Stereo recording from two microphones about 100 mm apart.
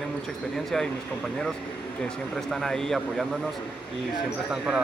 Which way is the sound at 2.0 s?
5° left (ahead or behind).